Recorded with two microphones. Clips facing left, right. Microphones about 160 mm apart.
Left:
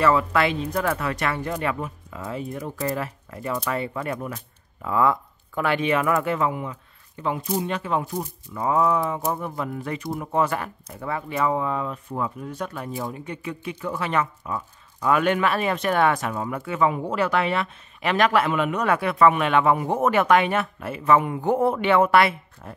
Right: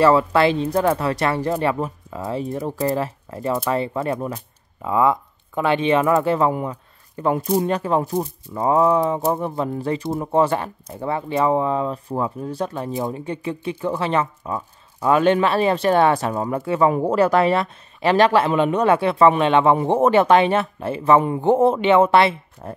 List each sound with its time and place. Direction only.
0.0 s speech: 30° right (ahead or behind)
22.6 s speech: 35° right (ahead or behind)